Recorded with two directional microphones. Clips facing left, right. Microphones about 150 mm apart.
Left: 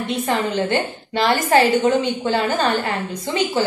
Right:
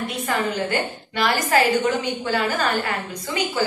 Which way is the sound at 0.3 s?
25° left (ahead or behind).